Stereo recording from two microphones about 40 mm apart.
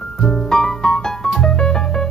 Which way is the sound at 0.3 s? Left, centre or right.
Centre.